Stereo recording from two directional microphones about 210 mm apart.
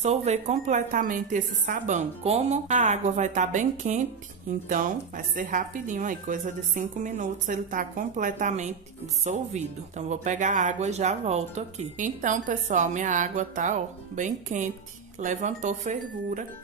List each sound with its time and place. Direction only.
0.0 s speech: 30° right (ahead or behind)